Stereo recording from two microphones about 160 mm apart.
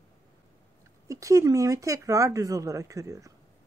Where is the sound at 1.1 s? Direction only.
20° right (ahead or behind).